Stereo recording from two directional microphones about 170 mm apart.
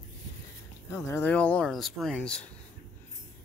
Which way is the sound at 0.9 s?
15° left (ahead or behind).